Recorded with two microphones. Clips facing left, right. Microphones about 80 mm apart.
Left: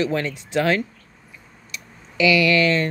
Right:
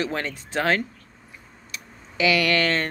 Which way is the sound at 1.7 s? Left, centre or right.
Right.